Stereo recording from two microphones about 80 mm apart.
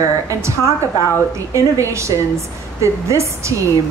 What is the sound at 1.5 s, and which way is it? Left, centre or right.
A woman's voice, right.